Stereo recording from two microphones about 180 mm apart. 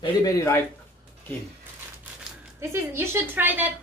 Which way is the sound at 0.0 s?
20° left (ahead or behind).